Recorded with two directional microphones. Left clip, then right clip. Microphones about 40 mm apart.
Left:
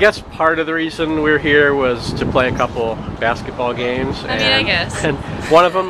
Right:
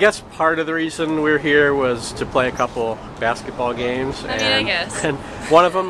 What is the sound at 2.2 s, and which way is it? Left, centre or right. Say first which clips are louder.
Speech: left 3 dB; right.